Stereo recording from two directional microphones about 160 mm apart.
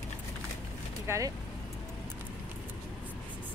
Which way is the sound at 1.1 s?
15° right (ahead or behind).